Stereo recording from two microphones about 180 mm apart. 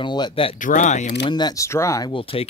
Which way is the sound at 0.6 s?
45° left (ahead or behind).